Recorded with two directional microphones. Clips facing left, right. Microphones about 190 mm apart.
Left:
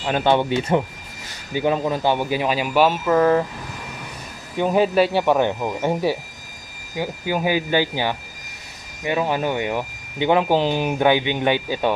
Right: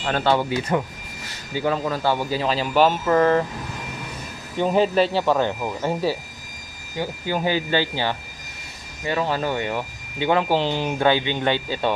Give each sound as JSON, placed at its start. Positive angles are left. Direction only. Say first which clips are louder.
{"t": 0.0, "sound": "speech", "louder": "left 2 dB", "side_deg": 15}
{"t": 4.6, "sound": "speech", "louder": "left 1 dB", "side_deg": 10}